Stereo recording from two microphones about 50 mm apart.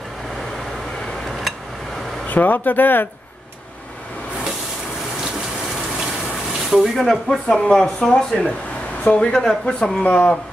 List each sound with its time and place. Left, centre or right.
2.2 s speech: left
6.7 s speech: centre
7.1 s speech: centre
10.0 s speech: left